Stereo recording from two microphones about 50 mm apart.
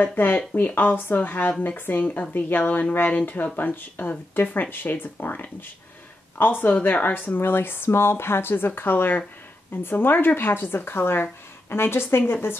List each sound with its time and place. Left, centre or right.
0.0 s speech: left
0.5 s speech: left
0.7 s speech: left
7.2 s speech: left